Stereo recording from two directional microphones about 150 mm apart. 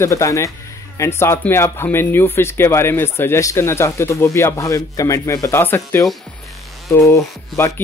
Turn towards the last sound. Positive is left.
turn(degrees=20)  # may be behind; listen again after turning